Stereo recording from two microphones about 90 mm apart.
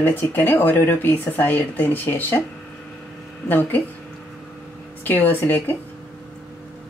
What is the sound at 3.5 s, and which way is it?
Speech, 20° left (ahead or behind).